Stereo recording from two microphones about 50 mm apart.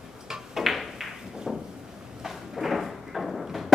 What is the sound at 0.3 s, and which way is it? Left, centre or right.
Drawer open or close, centre.